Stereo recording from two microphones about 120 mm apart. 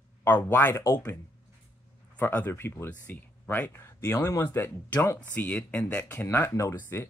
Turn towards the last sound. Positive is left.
turn(degrees=20)  # may be behind; listen again after turning